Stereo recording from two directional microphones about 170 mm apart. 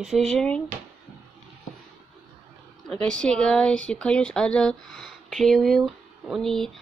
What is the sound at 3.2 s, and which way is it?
Speech, 5° left (ahead or behind).